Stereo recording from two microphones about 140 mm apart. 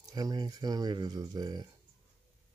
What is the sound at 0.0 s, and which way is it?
Speech, 25° right (ahead or behind).